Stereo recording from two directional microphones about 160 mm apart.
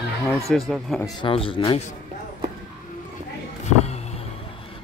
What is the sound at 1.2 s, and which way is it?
Speech, 35° left (ahead or behind).